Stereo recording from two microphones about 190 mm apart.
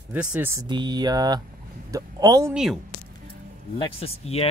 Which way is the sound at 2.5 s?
5° right (ahead or behind).